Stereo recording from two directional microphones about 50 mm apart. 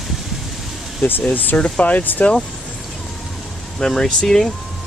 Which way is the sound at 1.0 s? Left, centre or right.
Centre.